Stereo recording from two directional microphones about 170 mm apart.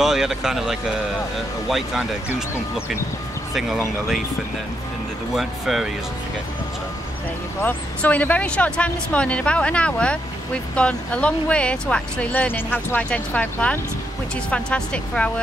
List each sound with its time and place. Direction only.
0.0 s speech: 5° right (ahead or behind)
5.3 s speech: centre (ahead or behind)
7.6 s speech: 10° left (ahead or behind)